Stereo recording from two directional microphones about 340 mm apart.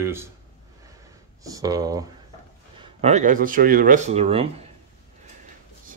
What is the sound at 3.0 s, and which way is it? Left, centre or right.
Speech, right.